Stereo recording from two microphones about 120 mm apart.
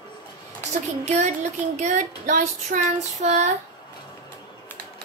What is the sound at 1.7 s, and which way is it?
Child singing, 85° right.